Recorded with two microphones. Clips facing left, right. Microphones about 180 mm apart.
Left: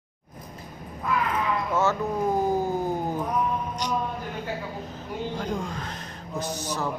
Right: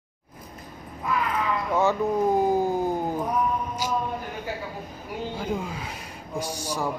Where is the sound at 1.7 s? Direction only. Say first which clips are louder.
Right 3 dB; 15° right (ahead or behind).